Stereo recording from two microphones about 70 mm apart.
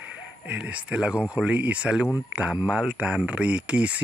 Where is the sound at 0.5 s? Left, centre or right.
Centre.